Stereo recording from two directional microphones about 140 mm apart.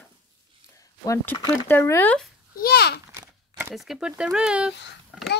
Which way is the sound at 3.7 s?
Centre (ahead or behind).